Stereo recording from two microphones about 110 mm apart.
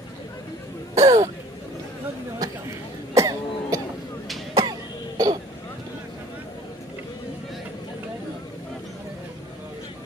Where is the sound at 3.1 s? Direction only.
30° right (ahead or behind).